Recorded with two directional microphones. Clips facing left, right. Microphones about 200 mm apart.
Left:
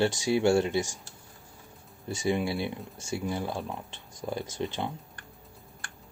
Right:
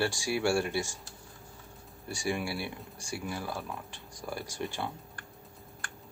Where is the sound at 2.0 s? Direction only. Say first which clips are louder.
Left 5 dB; 20° left (ahead or behind).